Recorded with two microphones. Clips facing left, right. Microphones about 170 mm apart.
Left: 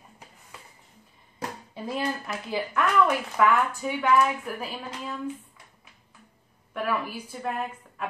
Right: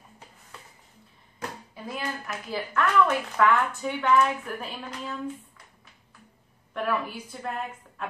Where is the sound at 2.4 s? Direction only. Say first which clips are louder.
Left 1 dB; 15° left (ahead or behind).